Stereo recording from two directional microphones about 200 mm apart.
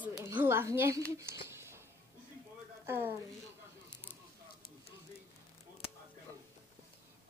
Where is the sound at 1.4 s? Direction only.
15° right (ahead or behind).